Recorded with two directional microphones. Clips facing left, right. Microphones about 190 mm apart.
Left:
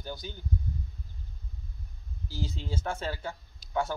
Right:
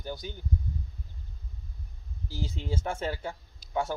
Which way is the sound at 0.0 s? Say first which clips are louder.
Right 2 dB; 15° right (ahead or behind).